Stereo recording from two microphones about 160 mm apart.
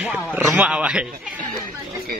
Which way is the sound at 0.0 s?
10° right (ahead or behind).